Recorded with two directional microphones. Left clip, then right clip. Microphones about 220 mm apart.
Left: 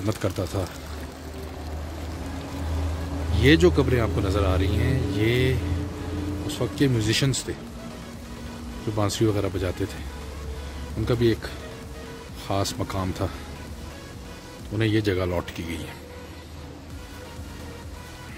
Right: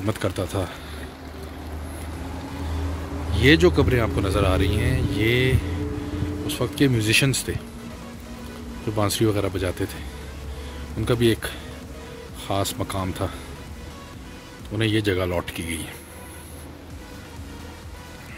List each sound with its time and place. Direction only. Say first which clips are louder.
0.0 s speech: right 2 dB; centre (ahead or behind)
3.3 s speech: right 2 dB; centre (ahead or behind)
8.9 s speech: right 2 dB; 5° right (ahead or behind)
11.1 s speech: right 2 dB; 5° right (ahead or behind)
14.8 s speech: right 1 dB; centre (ahead or behind)